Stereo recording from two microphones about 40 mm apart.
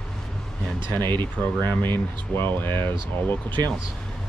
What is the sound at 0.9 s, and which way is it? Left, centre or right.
Speech, left.